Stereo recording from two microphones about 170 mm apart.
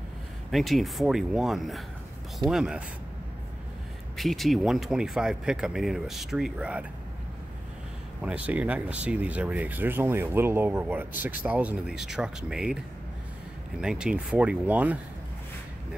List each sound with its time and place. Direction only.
0.5 s speech: centre (ahead or behind)
4.2 s speech: centre (ahead or behind)
8.2 s speech: 10° right (ahead or behind)
13.7 s speech: 5° right (ahead or behind)